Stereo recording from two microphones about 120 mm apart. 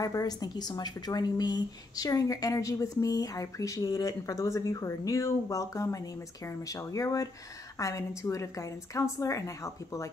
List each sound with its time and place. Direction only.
0.0 s a woman's voice: 30° left (ahead or behind)